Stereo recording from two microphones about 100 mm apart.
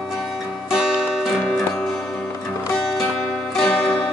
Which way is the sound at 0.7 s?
5° right (ahead or behind).